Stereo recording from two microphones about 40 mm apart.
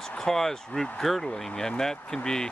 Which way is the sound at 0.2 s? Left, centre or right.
Centre.